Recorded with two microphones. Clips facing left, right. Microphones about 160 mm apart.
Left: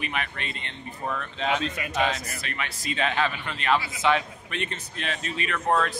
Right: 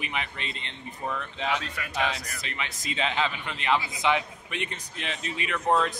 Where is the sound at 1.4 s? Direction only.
20° left (ahead or behind).